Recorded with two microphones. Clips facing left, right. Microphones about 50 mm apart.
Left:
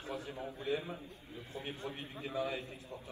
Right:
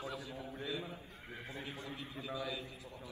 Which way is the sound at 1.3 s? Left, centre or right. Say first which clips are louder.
Even; right.